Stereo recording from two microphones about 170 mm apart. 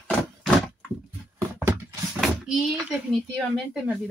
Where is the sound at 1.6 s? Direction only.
15° right (ahead or behind).